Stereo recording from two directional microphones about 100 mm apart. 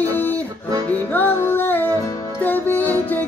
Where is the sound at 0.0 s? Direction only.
20° left (ahead or behind).